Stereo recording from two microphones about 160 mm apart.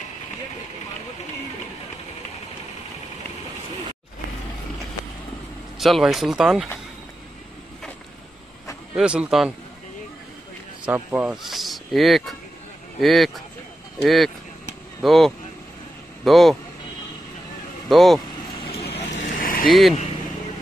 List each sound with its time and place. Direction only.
5.8 s speech: centre (ahead or behind)
8.9 s speech: 5° right (ahead or behind)
10.9 s speech: 10° right (ahead or behind)
17.8 s speech: centre (ahead or behind)
18.9 s vehicle: 55° left (ahead or behind)
19.7 s speech: centre (ahead or behind)